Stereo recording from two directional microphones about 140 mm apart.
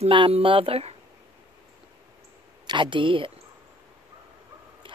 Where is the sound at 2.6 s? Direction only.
35° right (ahead or behind).